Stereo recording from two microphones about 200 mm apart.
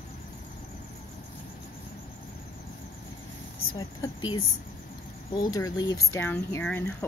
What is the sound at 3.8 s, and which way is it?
Speech, 20° left (ahead or behind).